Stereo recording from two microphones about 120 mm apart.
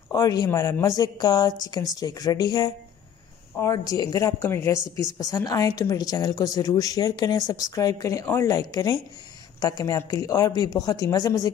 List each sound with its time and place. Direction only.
0.1 s a woman's voice: 30° left (ahead or behind)
4.4 s a woman's voice: 20° left (ahead or behind)